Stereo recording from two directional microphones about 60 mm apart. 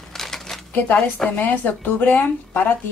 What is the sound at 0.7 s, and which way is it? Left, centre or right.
Speech, left.